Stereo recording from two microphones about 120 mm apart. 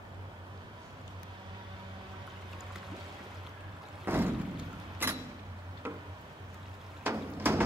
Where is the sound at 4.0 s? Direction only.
15° right (ahead or behind).